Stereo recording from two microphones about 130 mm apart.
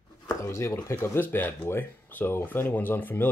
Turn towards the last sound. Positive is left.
turn(degrees=15)  # may be behind; listen again after turning